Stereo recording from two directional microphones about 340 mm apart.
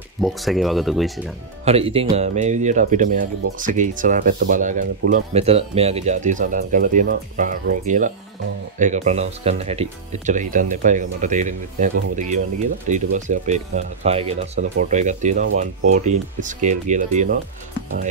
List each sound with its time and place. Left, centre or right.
0.2 s speech: centre
1.6 s speech: centre